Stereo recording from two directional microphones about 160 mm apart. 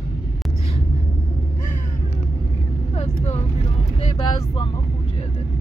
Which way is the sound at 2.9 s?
40° left (ahead or behind).